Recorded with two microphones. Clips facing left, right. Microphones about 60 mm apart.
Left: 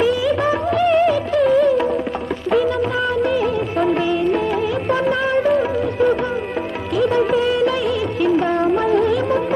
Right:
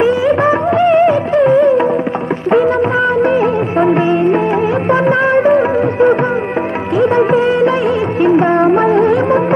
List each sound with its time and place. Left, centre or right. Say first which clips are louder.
0.0 s music: right 6 dB; right
2.5 s music of bollywood: right 6 dB; right
4.8 s music: right 7 dB; right
8.9 s music: right 6 dB; right